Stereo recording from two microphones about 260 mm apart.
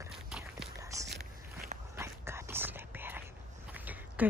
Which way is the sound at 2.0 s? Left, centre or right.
Centre.